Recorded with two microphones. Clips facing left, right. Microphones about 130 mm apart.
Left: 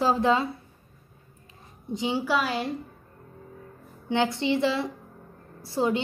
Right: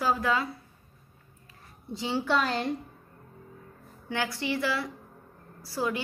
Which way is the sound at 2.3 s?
5° left (ahead or behind).